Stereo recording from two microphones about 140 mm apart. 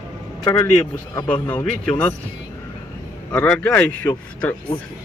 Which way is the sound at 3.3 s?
10° left (ahead or behind).